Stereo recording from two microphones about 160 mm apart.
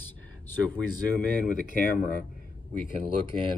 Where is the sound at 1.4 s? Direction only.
60° left (ahead or behind).